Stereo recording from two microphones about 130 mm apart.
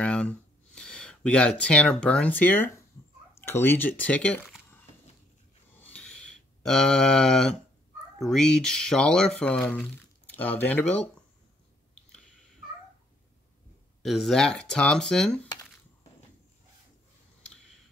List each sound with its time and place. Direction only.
0.0 s speech: 5° left (ahead or behind)
5.8 s a sound: 10° left (ahead or behind)
8.2 s speech: 5° left (ahead or behind)
14.0 s speech: centre (ahead or behind)